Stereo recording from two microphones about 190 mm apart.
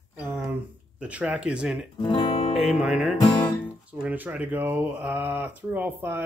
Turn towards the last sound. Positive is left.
turn(degrees=-10)  # may be behind; listen again after turning